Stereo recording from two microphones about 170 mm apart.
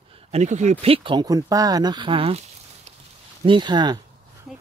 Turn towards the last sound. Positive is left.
turn(degrees=0)  # may be behind; listen again after turning